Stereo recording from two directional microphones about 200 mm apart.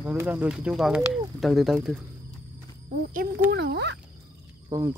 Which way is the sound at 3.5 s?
60° right (ahead or behind).